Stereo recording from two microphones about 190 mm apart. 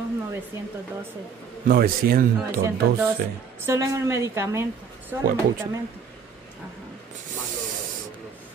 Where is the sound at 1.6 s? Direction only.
50° right (ahead or behind).